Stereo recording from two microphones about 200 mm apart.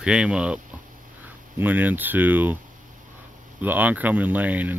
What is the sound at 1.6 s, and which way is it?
Speech, 10° right (ahead or behind).